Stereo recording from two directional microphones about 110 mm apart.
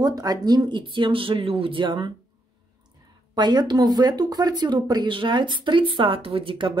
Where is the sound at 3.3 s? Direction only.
40° right (ahead or behind).